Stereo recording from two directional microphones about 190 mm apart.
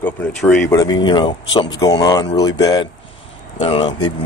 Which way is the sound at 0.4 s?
5° left (ahead or behind).